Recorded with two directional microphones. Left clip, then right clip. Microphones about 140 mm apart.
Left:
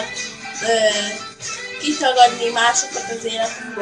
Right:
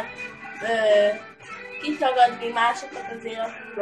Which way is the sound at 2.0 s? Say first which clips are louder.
Left 6 dB; 15° left (ahead or behind).